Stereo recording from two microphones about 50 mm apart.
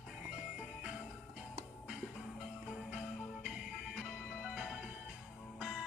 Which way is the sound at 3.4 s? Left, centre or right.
Centre.